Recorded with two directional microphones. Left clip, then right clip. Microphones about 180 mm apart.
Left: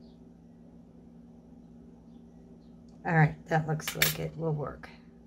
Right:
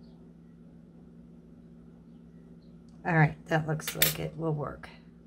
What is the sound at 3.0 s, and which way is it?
Speech, 10° right (ahead or behind).